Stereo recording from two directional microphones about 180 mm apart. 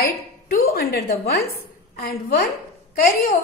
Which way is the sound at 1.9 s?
55° left (ahead or behind).